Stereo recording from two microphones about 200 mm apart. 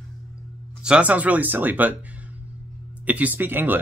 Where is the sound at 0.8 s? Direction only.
5° right (ahead or behind).